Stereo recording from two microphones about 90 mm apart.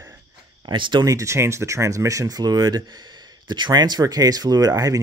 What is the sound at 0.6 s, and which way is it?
Speech, 60° right (ahead or behind).